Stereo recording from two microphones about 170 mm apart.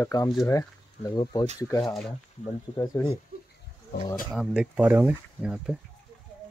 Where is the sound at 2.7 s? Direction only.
20° left (ahead or behind).